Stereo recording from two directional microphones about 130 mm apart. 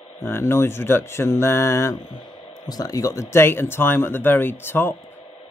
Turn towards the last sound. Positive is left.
turn(degrees=15)  # may be behind; listen again after turning